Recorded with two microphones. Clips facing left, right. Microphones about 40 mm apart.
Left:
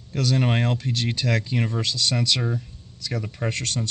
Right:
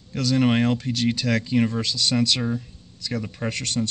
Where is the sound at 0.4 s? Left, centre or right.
Centre.